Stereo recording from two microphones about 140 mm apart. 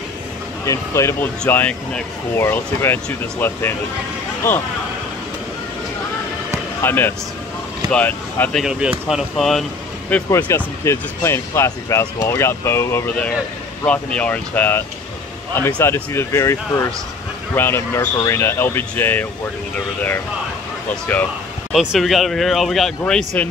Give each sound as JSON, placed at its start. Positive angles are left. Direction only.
{"t": 0.7, "sound": "speech", "side_deg": 20}
{"t": 1.4, "sound": "speech", "side_deg": 10}
{"t": 6.8, "sound": "speech", "side_deg": 15}
{"t": 8.6, "sound": "speech", "side_deg": -5}
{"t": 10.0, "sound": "speech", "side_deg": 15}
{"t": 20.9, "sound": "speech", "side_deg": 10}
{"t": 21.7, "sound": "speech", "side_deg": 0}